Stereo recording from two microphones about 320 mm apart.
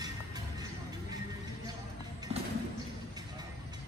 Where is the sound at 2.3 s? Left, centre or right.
Centre.